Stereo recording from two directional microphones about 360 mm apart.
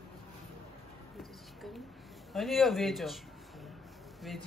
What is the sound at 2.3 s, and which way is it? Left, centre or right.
Speech, centre.